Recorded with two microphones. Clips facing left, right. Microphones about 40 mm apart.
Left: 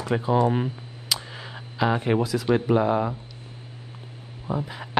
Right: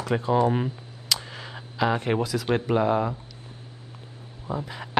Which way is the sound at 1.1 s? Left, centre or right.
Centre.